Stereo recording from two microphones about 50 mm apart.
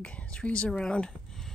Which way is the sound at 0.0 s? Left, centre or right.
Left.